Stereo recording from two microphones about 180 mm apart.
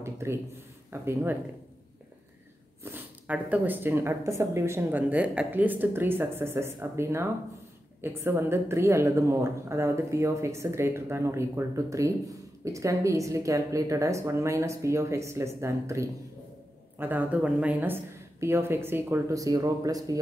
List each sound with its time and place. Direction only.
0.0 s a sound: 15° right (ahead or behind)
0.8 s speech: 10° right (ahead or behind)
2.8 s speech: 10° right (ahead or behind)